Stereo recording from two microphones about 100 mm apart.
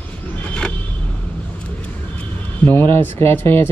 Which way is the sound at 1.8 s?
15° left (ahead or behind).